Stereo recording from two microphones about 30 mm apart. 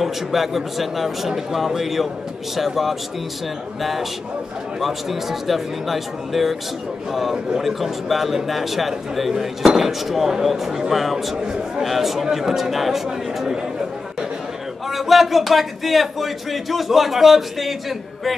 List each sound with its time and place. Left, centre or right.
0.0 s speech: centre
11.0 s speech: centre
11.3 s a man's voice: right
11.8 s speech: centre
14.9 s speech: centre